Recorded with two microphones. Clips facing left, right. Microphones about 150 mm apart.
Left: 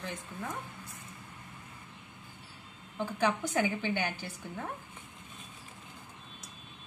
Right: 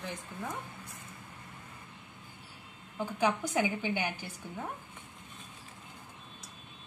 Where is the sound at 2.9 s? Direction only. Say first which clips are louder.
Even; 15° right (ahead or behind).